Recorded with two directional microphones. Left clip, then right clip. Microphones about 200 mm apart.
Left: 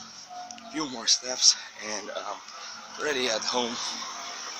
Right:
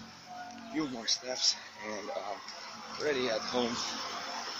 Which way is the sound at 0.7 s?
20° left (ahead or behind).